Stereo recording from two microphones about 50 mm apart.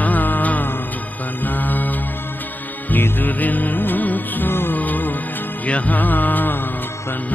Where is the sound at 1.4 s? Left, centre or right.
Left.